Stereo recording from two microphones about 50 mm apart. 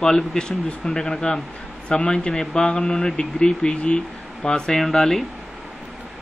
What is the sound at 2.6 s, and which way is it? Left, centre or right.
Speech, left.